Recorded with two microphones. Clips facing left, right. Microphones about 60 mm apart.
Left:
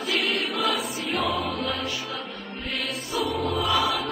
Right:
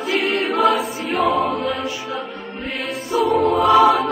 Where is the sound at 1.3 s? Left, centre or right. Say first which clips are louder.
Right 8 dB; right.